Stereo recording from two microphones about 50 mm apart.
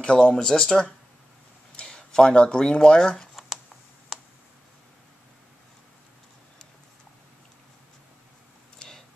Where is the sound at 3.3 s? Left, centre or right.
Centre.